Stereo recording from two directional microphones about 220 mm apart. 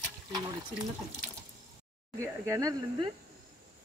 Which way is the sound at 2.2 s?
15° right (ahead or behind).